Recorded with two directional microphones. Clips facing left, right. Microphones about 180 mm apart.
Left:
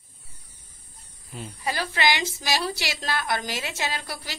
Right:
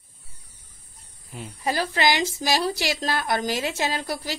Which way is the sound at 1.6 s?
40° right (ahead or behind).